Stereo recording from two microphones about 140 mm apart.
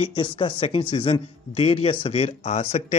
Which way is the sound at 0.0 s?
40° left (ahead or behind).